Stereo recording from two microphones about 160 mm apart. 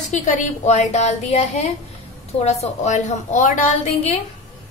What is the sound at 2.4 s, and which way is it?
A woman's voice, 45° left (ahead or behind).